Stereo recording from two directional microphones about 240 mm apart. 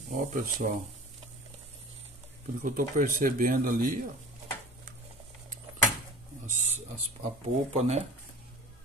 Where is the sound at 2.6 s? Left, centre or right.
Right.